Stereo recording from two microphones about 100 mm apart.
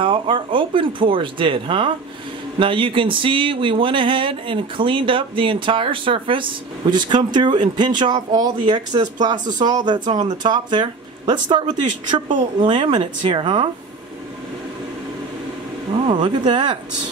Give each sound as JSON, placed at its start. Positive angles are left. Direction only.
{"t": 0.0, "sound": "speech", "side_deg": -60}
{"t": 16.1, "sound": "speech", "side_deg": -55}